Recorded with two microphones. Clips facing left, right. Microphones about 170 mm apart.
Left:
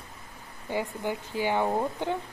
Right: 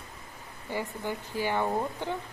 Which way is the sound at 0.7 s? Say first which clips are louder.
Left 3 dB; 15° left (ahead or behind).